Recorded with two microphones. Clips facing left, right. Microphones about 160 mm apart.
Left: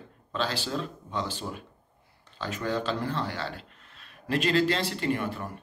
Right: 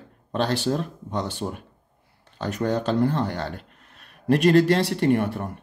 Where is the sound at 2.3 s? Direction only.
60° right (ahead or behind).